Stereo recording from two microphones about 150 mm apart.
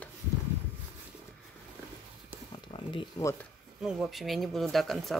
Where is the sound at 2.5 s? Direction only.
35° left (ahead or behind).